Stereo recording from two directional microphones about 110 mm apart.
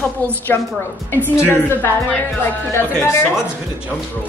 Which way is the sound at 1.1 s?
20° left (ahead or behind).